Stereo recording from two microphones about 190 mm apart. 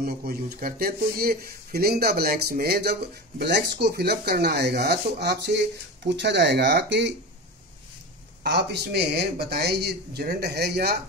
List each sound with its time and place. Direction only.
0.0 s speech: 55° right (ahead or behind)
8.5 s speech: 65° right (ahead or behind)